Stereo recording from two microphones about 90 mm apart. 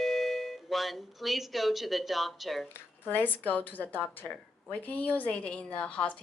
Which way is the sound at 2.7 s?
20° left (ahead or behind).